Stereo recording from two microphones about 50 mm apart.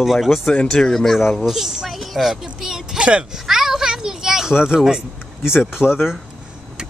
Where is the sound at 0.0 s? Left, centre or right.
Centre.